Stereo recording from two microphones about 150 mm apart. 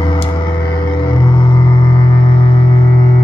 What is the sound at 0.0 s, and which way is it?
Music, 35° left (ahead or behind).